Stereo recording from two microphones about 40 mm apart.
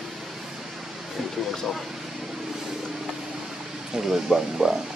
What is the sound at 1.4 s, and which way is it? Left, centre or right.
Speech, centre.